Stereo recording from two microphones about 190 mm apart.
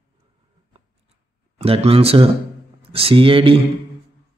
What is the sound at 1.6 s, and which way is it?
A man's voice, 30° right (ahead or behind).